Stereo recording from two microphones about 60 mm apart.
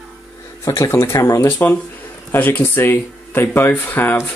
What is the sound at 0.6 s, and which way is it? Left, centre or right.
Speech, left.